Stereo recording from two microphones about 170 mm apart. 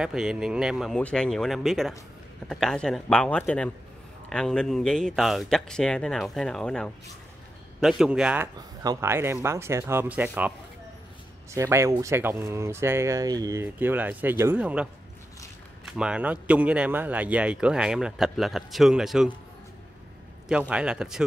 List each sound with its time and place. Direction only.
0.0 s speech: 5° right (ahead or behind)
8.5 s speech: 20° right (ahead or behind)
11.5 s speech: 15° right (ahead or behind)
20.4 s speech: 5° right (ahead or behind)